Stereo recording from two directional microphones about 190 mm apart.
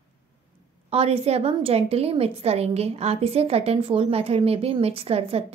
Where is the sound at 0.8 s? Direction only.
30° right (ahead or behind).